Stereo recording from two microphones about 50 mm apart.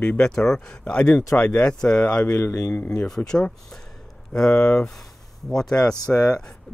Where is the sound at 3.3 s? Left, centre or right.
Centre.